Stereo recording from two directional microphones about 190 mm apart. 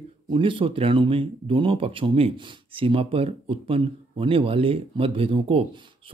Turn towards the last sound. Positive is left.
turn(degrees=-25)  # may be behind; listen again after turning